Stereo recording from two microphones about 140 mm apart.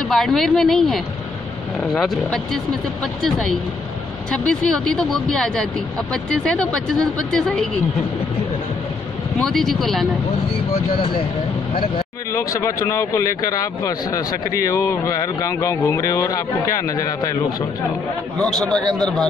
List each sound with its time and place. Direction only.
0.1 s speech: centre (ahead or behind)
9.4 s speech: 5° left (ahead or behind)
10.7 s speech: 40° left (ahead or behind)
12.3 s speech: 20° left (ahead or behind)
18.4 s speech: 5° left (ahead or behind)